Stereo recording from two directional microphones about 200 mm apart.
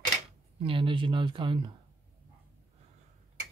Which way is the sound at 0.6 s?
25° right (ahead or behind).